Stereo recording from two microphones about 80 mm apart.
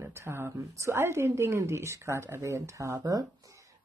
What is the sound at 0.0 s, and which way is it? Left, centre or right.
Speech, right.